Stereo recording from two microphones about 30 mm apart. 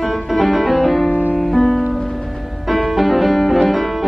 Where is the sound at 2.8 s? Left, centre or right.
Centre.